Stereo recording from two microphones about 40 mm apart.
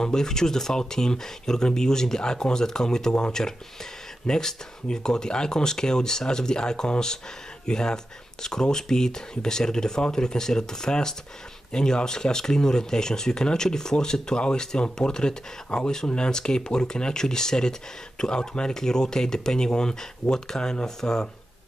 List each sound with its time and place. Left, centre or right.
0.0 s speech: centre